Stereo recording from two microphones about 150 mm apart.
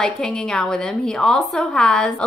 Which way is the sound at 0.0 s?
5° left (ahead or behind).